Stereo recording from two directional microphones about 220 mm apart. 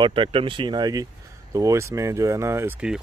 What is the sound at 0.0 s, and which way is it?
Speech, 25° right (ahead or behind).